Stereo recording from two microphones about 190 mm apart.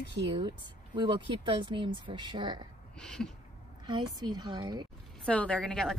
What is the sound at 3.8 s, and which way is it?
A woman's voice, 20° right (ahead or behind).